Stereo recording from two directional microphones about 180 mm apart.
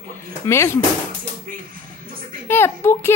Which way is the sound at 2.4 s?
15° left (ahead or behind).